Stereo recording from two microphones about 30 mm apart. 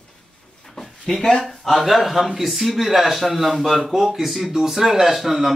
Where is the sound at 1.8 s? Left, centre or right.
Centre.